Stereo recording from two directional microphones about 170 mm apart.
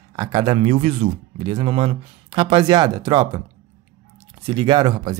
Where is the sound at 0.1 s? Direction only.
25° right (ahead or behind).